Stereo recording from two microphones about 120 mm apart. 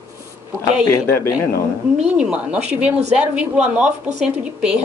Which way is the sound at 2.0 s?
10° right (ahead or behind).